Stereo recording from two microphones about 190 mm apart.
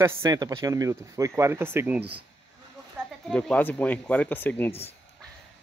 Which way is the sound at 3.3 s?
5° left (ahead or behind).